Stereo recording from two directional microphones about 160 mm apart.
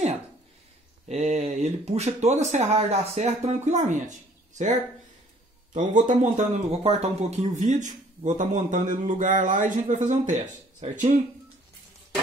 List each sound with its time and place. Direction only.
1.0 s a man's voice: 45° right (ahead or behind)
5.7 s a man's voice: 55° right (ahead or behind)